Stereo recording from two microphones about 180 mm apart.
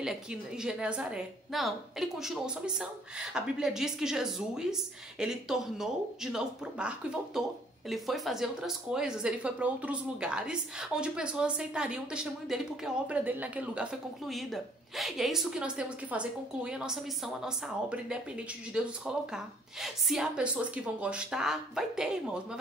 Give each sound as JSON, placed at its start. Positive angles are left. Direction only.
{"t": 0.0, "sound": "speech", "side_deg": -5}